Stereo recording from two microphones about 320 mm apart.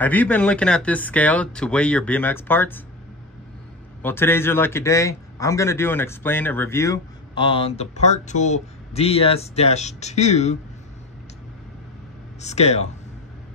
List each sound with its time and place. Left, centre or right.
0.0 s speech: centre
4.0 s a man's voice: centre
12.4 s speech: left